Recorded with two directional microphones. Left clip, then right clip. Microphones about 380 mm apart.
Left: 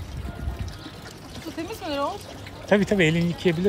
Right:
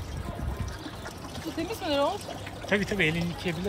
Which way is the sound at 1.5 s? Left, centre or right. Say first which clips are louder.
Right 1 dB; centre.